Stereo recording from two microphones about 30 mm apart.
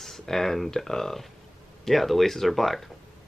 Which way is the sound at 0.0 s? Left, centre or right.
Centre.